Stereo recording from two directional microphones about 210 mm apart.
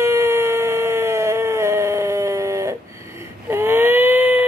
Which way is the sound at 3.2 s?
10° right (ahead or behind).